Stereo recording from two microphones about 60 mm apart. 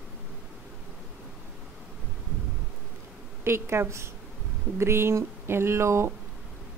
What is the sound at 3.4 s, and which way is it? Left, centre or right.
A woman's voice, right.